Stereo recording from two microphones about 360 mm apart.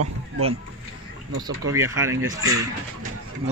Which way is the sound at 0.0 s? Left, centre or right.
Right.